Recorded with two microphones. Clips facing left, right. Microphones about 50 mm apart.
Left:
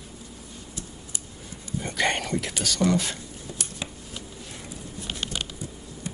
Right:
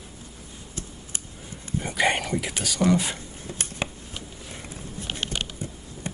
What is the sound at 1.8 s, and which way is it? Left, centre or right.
Speech, centre.